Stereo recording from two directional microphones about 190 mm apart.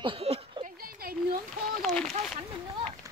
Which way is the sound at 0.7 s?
50° right (ahead or behind).